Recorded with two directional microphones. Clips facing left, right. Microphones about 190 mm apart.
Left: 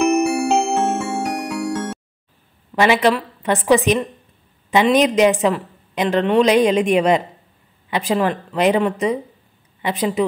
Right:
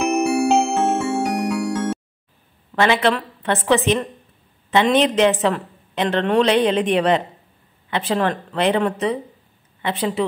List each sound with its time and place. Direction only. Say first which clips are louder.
0.0 s music: left 1 dB; centre (ahead or behind)
2.7 s a woman's voice: left 2 dB; 15° left (ahead or behind)